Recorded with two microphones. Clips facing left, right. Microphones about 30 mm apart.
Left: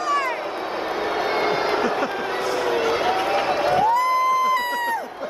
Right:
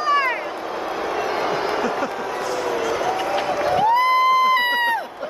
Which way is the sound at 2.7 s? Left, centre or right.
Left.